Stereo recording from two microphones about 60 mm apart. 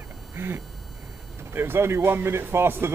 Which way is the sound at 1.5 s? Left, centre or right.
Right.